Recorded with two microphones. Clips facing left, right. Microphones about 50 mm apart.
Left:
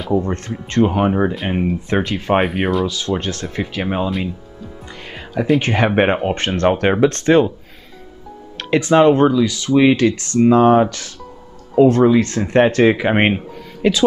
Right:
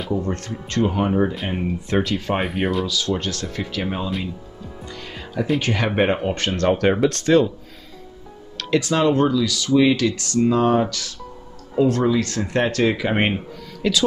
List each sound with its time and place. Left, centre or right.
0.1 s speech: left
2.4 s speech: centre
2.9 s speech: left
5.0 s music: left
5.6 s speech: left
8.5 s speech: left